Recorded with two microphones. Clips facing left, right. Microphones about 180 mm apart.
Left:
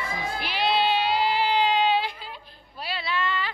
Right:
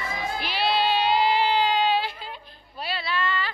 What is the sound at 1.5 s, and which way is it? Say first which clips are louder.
Child singing: even; 20° left (ahead or behind).